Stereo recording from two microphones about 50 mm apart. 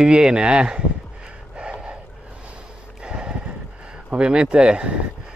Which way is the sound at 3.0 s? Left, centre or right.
Centre.